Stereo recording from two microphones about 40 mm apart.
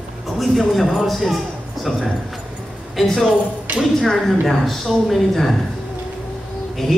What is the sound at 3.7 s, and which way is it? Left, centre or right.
Speech, right.